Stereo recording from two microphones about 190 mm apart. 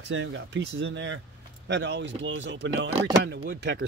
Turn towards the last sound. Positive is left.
turn(degrees=-65)  # may be behind; listen again after turning